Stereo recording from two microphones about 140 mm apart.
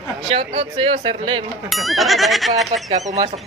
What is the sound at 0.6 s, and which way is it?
Speech, 40° right (ahead or behind).